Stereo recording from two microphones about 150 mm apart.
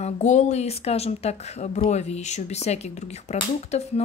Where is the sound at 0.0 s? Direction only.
50° left (ahead or behind).